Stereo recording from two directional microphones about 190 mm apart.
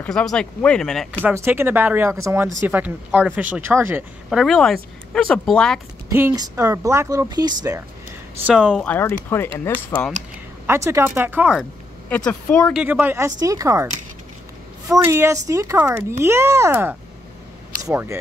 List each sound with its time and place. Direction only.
0.0 s speech: 5° left (ahead or behind)
1.2 s speech: 10° right (ahead or behind)
6.0 s speech: 15° right (ahead or behind)
8.5 s speech: 5° right (ahead or behind)
8.8 s speech: 10° left (ahead or behind)
10.7 s speech: 15° right (ahead or behind)
12.1 s speech: 5° left (ahead or behind)
12.7 s speech: 10° right (ahead or behind)
14.9 s speech: 15° right (ahead or behind)